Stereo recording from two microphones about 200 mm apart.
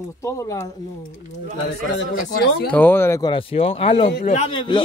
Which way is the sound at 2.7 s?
10° left (ahead or behind).